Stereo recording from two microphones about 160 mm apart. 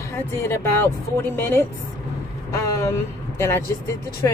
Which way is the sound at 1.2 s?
15° left (ahead or behind).